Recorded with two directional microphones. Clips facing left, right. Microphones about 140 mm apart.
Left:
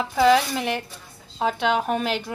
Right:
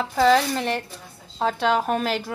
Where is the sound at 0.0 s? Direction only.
5° left (ahead or behind).